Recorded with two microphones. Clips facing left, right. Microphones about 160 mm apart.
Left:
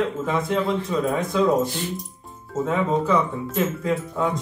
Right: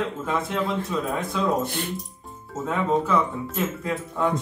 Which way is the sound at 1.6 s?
60° right (ahead or behind).